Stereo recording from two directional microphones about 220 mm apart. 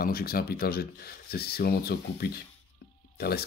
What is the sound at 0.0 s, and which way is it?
Speech, 45° left (ahead or behind).